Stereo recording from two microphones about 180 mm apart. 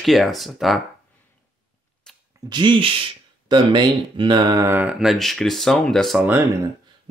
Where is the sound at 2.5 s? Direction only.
25° right (ahead or behind); by 6.3 s centre (ahead or behind).